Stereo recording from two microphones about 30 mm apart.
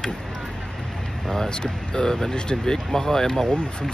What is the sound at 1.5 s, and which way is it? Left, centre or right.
Speech, left.